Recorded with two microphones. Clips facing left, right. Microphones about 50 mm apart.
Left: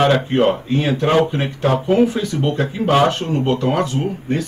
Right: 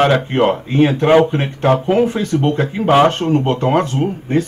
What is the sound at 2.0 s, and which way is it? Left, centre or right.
A man's voice, right.